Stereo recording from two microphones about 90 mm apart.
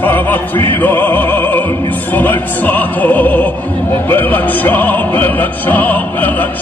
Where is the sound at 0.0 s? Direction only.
20° left (ahead or behind).